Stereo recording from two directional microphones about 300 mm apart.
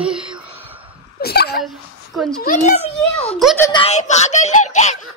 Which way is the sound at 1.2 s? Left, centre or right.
Left.